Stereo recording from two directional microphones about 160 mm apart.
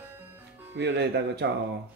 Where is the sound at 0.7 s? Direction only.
90° right.